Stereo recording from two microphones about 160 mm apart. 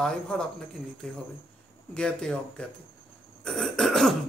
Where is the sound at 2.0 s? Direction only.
5° left (ahead or behind).